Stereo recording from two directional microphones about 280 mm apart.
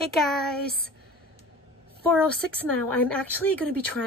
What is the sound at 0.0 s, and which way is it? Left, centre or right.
Speech, centre.